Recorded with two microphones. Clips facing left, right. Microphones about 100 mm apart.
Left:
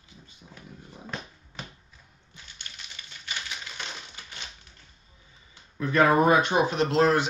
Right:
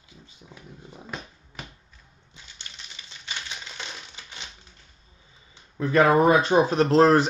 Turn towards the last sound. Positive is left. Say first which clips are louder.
# right 5 dB
turn(degrees=-40)  # may be behind; listen again after turning